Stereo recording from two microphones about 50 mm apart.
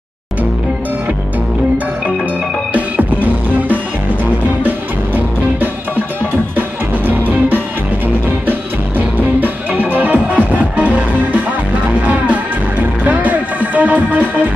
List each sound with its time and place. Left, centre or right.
2.7 s music: right
7.1 s music: right
13.0 s music: right